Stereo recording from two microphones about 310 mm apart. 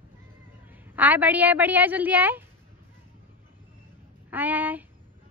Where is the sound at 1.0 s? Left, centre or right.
Centre.